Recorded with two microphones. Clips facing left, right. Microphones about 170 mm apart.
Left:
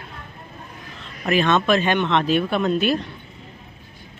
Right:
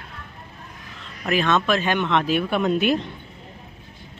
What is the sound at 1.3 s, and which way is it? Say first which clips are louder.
Speech: left 2 dB; centre (ahead or behind).